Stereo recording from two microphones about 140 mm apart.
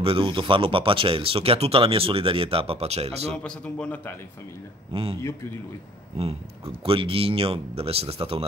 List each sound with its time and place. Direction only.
0.0 s speech: 40° right (ahead or behind)
3.4 s speech: 5° left (ahead or behind)
6.1 s speech: 45° right (ahead or behind)